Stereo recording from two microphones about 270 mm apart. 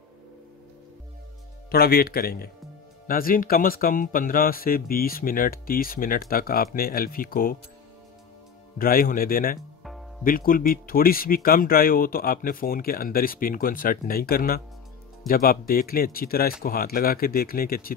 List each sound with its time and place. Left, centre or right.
1.7 s speech: left
8.7 s speech: left